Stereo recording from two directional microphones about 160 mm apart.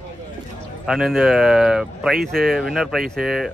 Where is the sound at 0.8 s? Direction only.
5° right (ahead or behind).